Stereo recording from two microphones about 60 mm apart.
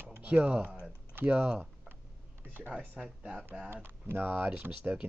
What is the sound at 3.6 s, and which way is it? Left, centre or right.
Speech, right.